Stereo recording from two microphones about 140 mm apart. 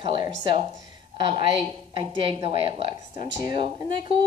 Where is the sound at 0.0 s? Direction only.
35° right (ahead or behind).